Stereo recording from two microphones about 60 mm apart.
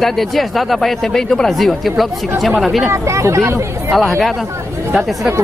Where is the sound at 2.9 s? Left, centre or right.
Right.